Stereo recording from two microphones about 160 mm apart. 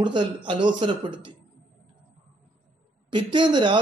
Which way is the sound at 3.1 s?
30° right (ahead or behind).